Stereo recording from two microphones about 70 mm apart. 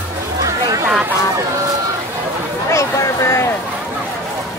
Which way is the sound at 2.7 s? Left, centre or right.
Left.